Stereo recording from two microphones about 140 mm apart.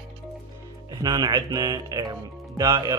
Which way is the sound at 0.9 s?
30° right (ahead or behind).